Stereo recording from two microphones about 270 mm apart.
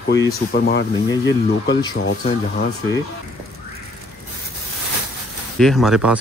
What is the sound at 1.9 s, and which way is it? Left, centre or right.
Speech, left.